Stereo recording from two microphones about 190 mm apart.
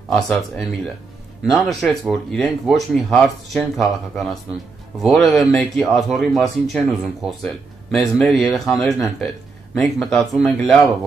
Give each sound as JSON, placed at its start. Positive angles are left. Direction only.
{"t": 0.1, "sound": "speech", "side_deg": 0}